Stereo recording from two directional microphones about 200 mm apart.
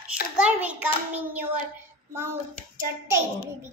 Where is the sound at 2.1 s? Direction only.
10° right (ahead or behind).